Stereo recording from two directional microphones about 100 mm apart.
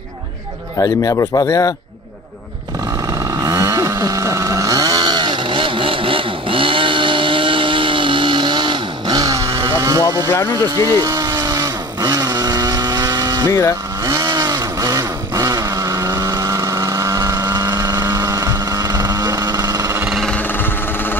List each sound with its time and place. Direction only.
0.7 s speech: 35° left (ahead or behind)
3.1 s chainsaw: 35° right (ahead or behind)
11.0 s vehicle: 35° right (ahead or behind)
13.5 s speech: 30° left (ahead or behind)
14.0 s vehicle: 35° right (ahead or behind)
20.2 s jackhammer: 15° left (ahead or behind)